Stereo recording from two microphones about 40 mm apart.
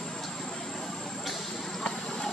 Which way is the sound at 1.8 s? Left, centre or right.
Centre.